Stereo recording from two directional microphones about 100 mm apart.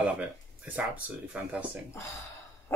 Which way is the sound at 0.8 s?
15° right (ahead or behind).